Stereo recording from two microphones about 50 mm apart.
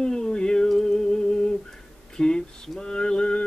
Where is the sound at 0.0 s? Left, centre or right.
Centre.